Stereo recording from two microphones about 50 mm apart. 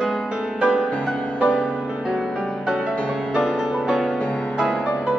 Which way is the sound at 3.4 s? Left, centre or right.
Centre.